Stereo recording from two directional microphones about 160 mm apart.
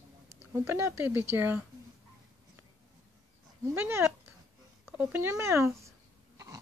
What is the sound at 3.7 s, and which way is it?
Cat, 15° right (ahead or behind).